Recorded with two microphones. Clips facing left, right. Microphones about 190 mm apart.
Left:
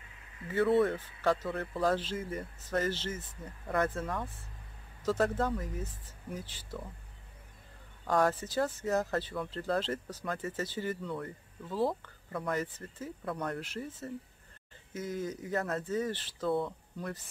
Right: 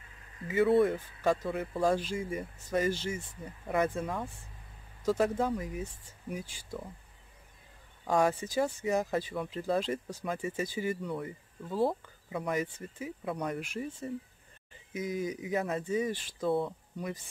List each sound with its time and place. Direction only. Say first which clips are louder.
0.7 s speech: right 2 dB; 15° right (ahead or behind)
8.1 s speech: right 1 dB; 10° right (ahead or behind)
16.4 s speech: right 2 dB; 25° right (ahead or behind)